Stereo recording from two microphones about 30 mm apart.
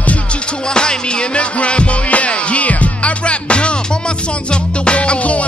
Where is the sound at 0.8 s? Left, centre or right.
Left.